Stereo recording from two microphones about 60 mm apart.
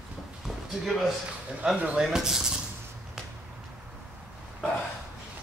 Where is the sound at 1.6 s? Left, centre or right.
Centre.